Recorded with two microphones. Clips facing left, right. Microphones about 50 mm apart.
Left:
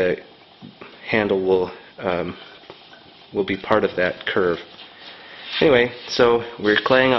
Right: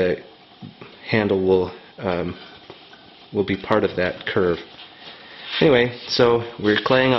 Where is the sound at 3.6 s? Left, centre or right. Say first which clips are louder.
Left 3 dB; centre.